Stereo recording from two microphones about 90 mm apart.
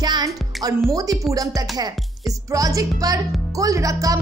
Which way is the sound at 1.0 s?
40° right (ahead or behind).